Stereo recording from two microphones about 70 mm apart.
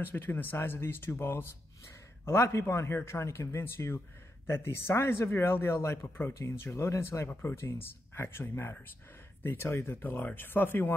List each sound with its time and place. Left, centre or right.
0.0 s speech: left